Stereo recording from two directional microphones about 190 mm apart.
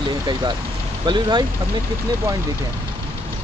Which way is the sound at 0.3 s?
20° right (ahead or behind).